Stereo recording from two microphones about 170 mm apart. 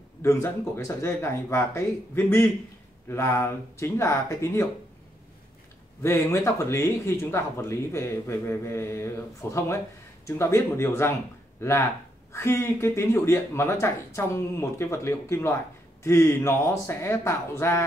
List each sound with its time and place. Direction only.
0.2 s speech: 15° left (ahead or behind)
6.0 s speech: 15° left (ahead or behind)